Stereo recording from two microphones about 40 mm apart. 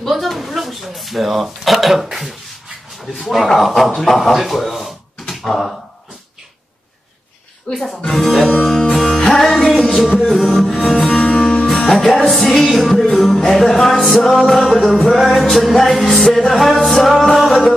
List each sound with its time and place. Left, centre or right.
0.1 s a sound: centre
3.2 s music: centre
5.5 s speech: centre
7.7 s speech: left
8.1 s music: centre
11.3 s music: centre
11.7 s music: centre